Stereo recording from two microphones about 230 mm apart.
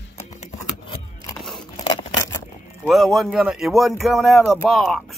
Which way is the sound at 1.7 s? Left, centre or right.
Centre.